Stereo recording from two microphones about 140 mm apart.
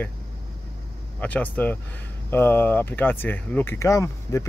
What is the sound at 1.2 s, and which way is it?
Speech, 10° left (ahead or behind).